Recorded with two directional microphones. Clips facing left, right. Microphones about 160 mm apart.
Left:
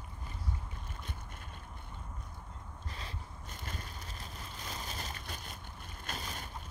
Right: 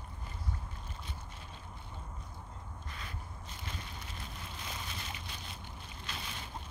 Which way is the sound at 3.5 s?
45° left (ahead or behind).